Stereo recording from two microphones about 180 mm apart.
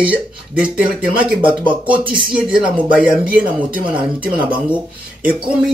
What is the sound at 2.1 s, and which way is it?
Speech, 5° right (ahead or behind).